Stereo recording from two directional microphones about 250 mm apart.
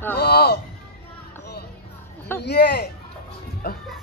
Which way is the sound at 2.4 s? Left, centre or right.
Left.